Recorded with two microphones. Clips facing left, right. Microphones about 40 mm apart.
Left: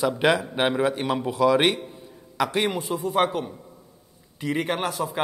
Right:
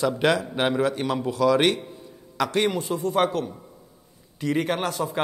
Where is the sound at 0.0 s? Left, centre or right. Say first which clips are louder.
Even; centre.